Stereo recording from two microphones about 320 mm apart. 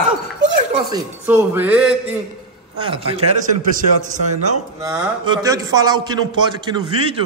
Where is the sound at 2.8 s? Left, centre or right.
Centre.